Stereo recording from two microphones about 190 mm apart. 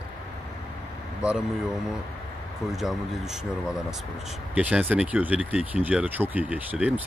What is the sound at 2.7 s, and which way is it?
Speech, centre (ahead or behind).